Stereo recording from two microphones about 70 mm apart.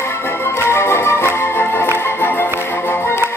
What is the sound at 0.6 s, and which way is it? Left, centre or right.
Music, left.